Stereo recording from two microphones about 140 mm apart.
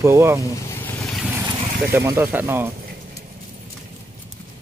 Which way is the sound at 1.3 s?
20° right (ahead or behind).